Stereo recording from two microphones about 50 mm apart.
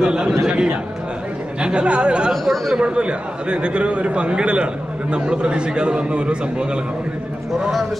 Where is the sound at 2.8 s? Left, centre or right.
Right.